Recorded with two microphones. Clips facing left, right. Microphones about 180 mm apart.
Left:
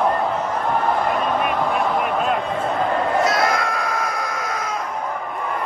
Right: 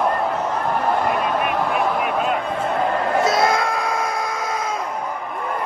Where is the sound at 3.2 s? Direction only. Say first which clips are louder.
Right 2 dB; 25° right (ahead or behind).